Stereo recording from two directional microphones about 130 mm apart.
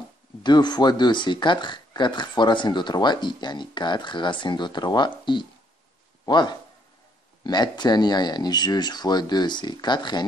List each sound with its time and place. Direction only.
0.4 s a man's voice: 35° left (ahead or behind)